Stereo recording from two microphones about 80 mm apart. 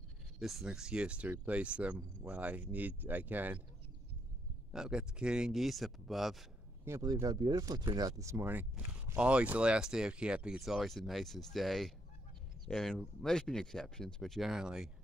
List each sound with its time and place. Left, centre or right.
0.4 s speech: centre; by 3.6 s right
4.7 s speech: centre
7.0 s speech: right
8.2 s speech: right
8.5 s speech: centre